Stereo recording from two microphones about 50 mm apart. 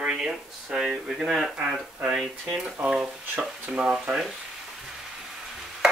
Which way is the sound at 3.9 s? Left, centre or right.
Centre.